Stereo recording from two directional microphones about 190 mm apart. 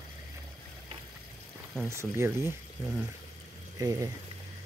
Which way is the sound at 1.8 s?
15° right (ahead or behind).